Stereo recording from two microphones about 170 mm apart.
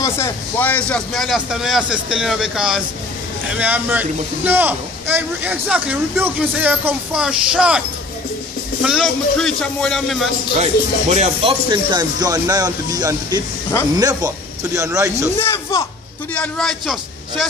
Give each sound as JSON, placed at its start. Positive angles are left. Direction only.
{"t": 0.0, "sound": "a man's voice", "side_deg": 15}
{"t": 8.8, "sound": "a man's voice", "side_deg": 0}
{"t": 10.6, "sound": "speech", "side_deg": -40}
{"t": 11.7, "sound": "speech", "side_deg": -25}
{"t": 15.4, "sound": "speech", "side_deg": 15}
{"t": 16.3, "sound": "a man's voice", "side_deg": 0}